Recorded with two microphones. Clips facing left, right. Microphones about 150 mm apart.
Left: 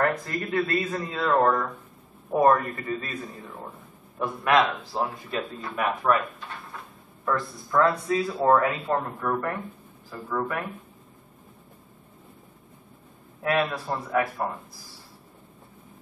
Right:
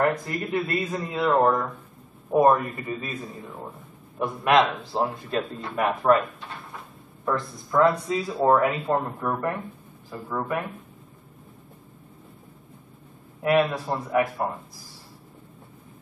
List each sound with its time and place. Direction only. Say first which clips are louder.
0.0 s speech: right 2 dB; 10° right (ahead or behind)
4.2 s a man's voice: right 2 dB; 20° right (ahead or behind)
5.3 s a man's voice: right 3 dB; centre (ahead or behind)
7.2 s a man's voice: right 1 dB; 15° right (ahead or behind)
13.4 s speech: right 4 dB; 15° right (ahead or behind)